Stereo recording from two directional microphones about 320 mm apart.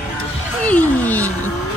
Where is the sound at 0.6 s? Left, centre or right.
Centre.